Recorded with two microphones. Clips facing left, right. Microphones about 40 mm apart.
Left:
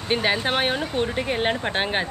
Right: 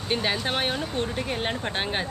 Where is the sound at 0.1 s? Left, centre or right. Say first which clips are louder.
Left 4 dB; left.